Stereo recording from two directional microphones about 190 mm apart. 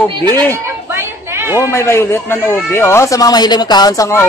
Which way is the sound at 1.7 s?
15° left (ahead or behind).